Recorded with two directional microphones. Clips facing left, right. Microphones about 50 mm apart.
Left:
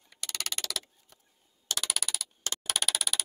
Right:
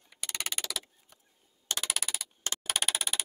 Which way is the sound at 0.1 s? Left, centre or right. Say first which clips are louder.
Even; centre.